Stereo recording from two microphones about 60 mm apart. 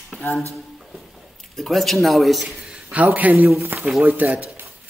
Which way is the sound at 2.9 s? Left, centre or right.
Right.